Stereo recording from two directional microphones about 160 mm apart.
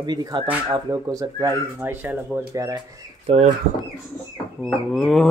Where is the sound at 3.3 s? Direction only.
40° right (ahead or behind).